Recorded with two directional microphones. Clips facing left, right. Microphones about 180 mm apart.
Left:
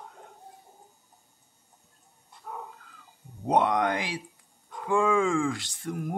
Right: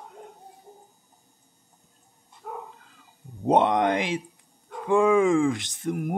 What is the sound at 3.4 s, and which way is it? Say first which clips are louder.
Speech: right 4 dB; 25° right (ahead or behind).